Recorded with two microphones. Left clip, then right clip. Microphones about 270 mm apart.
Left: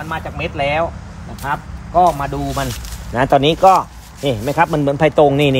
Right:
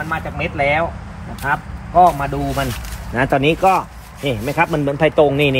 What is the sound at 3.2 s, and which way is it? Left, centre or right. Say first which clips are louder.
Speech: left 3 dB; left.